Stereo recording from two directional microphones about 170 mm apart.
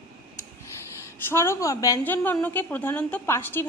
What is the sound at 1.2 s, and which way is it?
A woman's voice, 15° left (ahead or behind).